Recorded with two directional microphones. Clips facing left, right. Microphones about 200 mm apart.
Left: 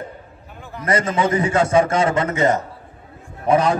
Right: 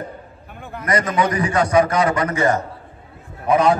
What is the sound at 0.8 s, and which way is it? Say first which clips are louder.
A man's voice: even; 25° left (ahead or behind).